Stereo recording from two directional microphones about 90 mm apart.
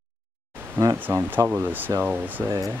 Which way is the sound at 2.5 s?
35° right (ahead or behind).